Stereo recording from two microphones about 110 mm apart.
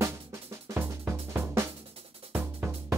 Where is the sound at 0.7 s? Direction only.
20° right (ahead or behind).